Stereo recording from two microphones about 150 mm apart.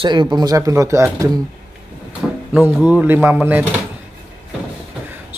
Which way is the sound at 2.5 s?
10° right (ahead or behind).